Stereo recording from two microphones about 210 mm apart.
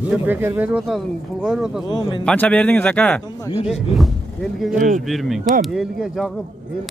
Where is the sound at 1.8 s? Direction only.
20° left (ahead or behind).